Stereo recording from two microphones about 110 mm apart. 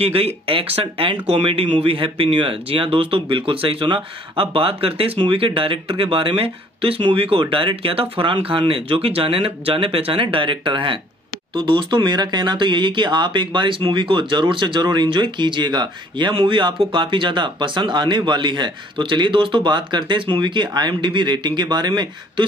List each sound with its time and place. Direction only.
0.0 s speech: 60° right (ahead or behind); by 22.5 s 40° right (ahead or behind)